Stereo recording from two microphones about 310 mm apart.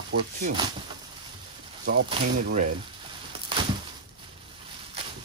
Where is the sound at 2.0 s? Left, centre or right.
Right.